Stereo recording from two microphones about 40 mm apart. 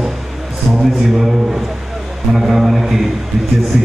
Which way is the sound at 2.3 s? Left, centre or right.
Centre.